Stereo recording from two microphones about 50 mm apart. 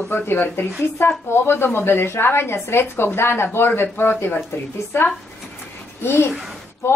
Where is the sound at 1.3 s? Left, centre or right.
Left.